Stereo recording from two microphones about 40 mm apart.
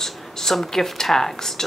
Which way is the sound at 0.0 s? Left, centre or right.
Centre.